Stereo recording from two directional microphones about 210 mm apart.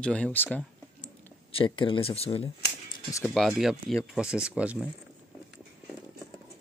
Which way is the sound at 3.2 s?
Centre (ahead or behind).